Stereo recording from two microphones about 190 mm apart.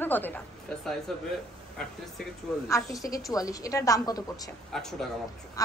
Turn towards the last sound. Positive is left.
turn(degrees=20)  # may be behind; listen again after turning